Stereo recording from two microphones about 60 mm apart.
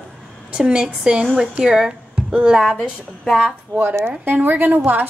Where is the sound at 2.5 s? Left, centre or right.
Centre.